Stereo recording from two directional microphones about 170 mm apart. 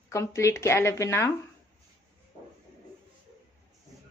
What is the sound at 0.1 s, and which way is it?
A woman's voice, 15° left (ahead or behind).